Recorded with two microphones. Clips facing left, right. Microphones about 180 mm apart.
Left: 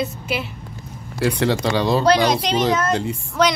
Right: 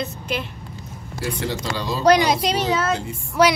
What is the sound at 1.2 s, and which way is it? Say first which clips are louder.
Speech: left 7 dB; 70° left (ahead or behind).